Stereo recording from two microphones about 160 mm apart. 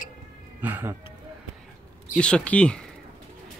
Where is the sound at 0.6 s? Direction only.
10° right (ahead or behind).